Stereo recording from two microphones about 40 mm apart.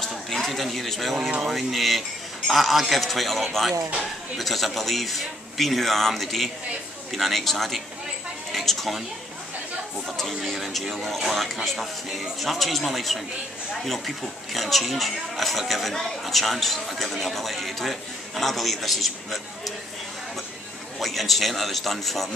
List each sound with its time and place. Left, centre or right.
0.0 s a sound: centre
1.4 s a woman's voice: centre
10.0 s speech: centre
21.0 s speech: centre